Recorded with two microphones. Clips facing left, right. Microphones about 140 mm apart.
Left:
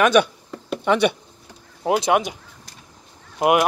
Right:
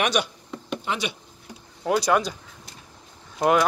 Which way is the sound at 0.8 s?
60° left (ahead or behind).